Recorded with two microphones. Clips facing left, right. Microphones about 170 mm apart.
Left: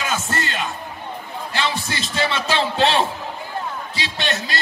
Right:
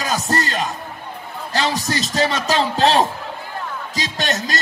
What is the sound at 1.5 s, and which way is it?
A man's voice, 40° right (ahead or behind).